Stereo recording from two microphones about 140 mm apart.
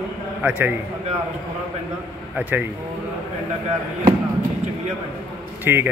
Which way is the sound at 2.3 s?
10° right (ahead or behind).